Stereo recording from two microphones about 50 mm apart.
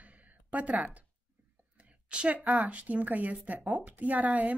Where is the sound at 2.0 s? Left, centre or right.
Right.